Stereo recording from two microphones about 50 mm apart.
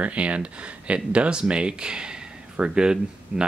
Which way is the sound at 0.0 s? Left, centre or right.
Right.